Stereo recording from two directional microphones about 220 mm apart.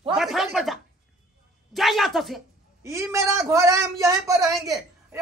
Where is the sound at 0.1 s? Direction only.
Centre (ahead or behind).